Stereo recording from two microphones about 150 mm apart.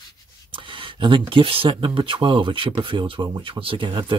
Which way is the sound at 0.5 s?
35° right (ahead or behind).